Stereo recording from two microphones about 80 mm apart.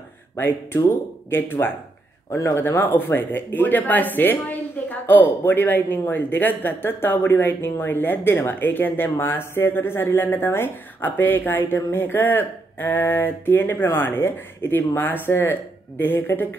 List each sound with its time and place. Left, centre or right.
0.7 s speech: left